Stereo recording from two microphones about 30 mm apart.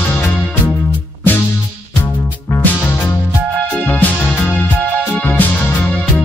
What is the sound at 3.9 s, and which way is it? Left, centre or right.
Music, left.